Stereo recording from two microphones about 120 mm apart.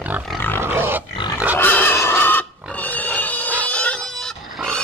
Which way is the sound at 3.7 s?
10° left (ahead or behind).